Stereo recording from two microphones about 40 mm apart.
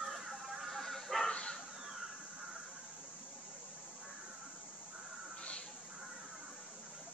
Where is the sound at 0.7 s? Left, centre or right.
Centre.